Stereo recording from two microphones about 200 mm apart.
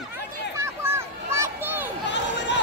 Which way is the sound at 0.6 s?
15° right (ahead or behind).